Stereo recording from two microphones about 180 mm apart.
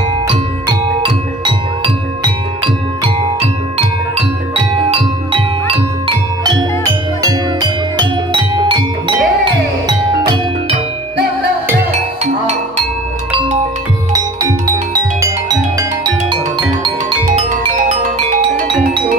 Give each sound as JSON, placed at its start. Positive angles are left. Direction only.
{"t": 0.3, "sound": "music", "side_deg": -30}
{"t": 16.3, "sound": "music", "side_deg": -25}
{"t": 17.4, "sound": "marimba", "side_deg": -40}